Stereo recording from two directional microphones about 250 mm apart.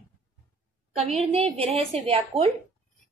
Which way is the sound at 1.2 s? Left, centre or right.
Right.